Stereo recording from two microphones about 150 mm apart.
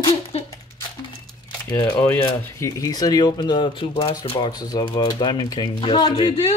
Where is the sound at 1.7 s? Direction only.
20° left (ahead or behind); by 4.5 s 40° left (ahead or behind).